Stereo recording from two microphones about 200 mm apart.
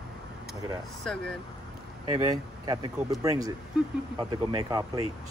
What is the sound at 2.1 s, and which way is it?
Speech, 20° right (ahead or behind).